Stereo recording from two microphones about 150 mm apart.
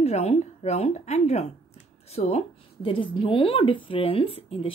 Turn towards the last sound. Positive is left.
turn(degrees=40)  # may be behind; listen again after turning